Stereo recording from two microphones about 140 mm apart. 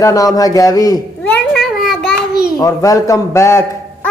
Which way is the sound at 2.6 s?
25° left (ahead or behind).